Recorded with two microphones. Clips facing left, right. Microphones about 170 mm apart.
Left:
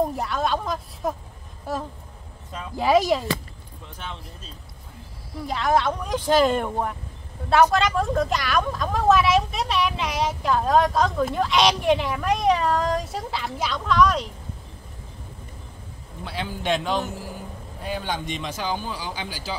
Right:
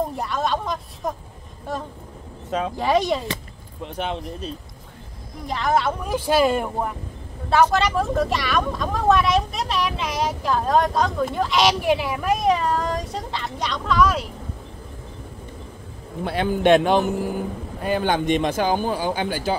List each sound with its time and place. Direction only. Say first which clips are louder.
0.1 s speech: right 1 dB; centre (ahead or behind)
3.8 s speech: right 11 dB; 70° right (ahead or behind)
5.5 s speech: even; centre (ahead or behind)
16.3 s speech: right 9 dB; 55° right (ahead or behind)